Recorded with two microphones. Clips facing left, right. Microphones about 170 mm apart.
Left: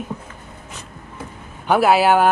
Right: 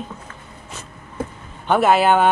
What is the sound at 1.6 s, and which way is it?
Speech, 5° left (ahead or behind).